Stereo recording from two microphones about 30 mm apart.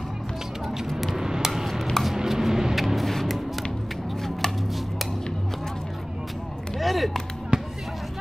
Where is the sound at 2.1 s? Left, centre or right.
Centre.